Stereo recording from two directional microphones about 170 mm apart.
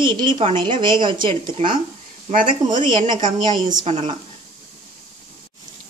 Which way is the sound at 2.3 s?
50° right (ahead or behind).